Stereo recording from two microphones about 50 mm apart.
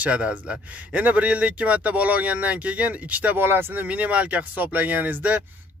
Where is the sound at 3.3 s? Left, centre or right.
Right.